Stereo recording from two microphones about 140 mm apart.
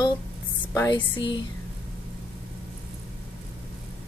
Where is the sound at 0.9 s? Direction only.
35° left (ahead or behind).